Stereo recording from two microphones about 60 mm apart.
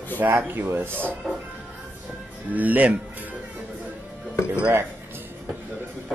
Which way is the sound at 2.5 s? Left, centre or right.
Right.